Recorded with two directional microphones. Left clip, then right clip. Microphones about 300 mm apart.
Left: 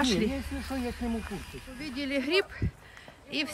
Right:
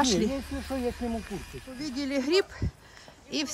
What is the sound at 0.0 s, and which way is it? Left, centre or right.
Speech, centre.